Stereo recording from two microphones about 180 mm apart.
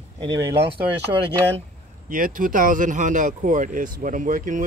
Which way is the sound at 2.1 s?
50° right (ahead or behind).